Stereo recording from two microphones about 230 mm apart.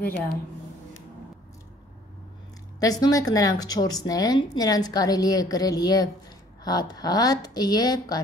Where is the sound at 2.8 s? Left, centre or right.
Centre.